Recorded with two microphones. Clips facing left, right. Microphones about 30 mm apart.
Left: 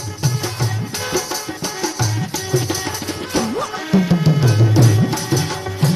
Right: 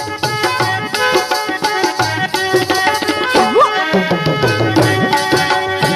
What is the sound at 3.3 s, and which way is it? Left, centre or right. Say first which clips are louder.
Music: right 10 dB; right.